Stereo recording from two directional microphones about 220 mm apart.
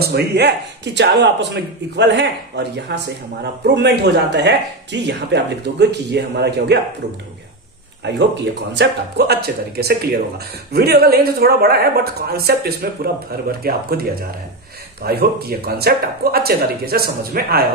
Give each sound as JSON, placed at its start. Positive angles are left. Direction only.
{"t": 0.0, "sound": "speech", "side_deg": -45}
{"t": 8.7, "sound": "speech", "side_deg": -50}
{"t": 15.0, "sound": "speech", "side_deg": -45}